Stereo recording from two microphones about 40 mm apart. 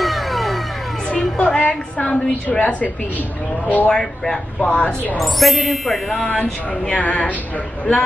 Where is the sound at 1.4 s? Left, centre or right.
Left.